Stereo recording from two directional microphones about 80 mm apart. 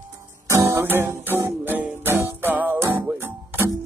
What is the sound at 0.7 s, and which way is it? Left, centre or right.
Music, right.